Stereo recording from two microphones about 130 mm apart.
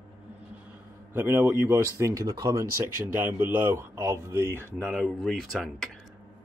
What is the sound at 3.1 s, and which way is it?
Speech, 15° right (ahead or behind).